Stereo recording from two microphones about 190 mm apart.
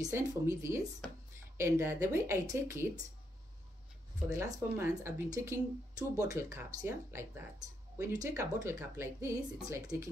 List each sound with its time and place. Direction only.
0.0 s speech: 15° right (ahead or behind)
4.3 s speech: 15° right (ahead or behind)